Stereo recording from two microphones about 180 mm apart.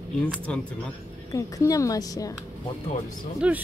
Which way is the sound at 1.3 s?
20° left (ahead or behind).